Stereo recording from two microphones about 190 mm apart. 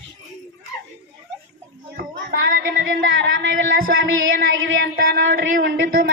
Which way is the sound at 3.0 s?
80° right.